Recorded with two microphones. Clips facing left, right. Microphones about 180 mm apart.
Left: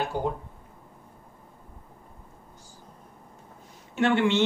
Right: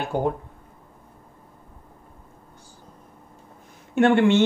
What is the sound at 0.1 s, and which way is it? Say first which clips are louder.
Speech: right 8 dB; 55° right (ahead or behind).